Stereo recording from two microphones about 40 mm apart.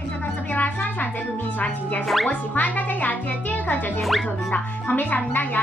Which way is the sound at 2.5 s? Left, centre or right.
Left.